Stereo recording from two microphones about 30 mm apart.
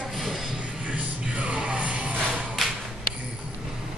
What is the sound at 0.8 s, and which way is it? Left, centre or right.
Music, right.